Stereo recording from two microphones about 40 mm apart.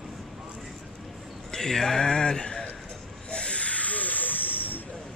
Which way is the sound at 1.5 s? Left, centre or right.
Centre.